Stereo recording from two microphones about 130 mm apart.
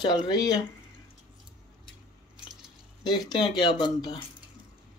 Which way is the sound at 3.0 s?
35° left (ahead or behind).